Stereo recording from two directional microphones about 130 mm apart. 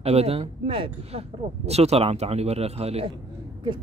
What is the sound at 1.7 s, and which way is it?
Speech, 55° right (ahead or behind).